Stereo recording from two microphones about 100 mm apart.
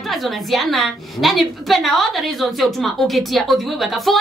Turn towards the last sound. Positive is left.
turn(degrees=0)  # may be behind; listen again after turning